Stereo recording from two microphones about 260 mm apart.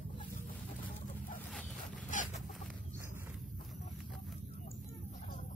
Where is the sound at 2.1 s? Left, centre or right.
Left.